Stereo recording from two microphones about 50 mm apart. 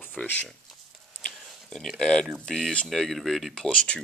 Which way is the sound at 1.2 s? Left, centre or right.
Centre.